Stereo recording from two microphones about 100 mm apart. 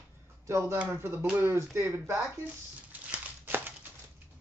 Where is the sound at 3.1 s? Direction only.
20° right (ahead or behind).